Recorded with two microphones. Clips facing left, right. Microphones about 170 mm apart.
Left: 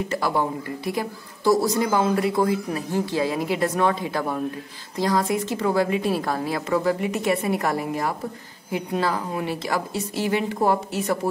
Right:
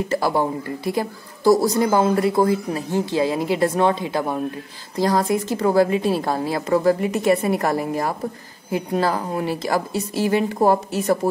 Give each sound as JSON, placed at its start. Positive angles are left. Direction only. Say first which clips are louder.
{"t": 0.1, "sound": "a woman's voice", "louder": "right 4 dB", "side_deg": -35}
{"t": 2.9, "sound": "a woman's voice", "louder": "right 3 dB", "side_deg": -25}
{"t": 4.9, "sound": "a woman's voice", "louder": "right 3 dB", "side_deg": -35}